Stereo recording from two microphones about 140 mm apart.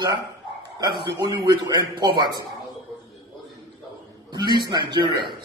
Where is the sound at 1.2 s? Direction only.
30° right (ahead or behind).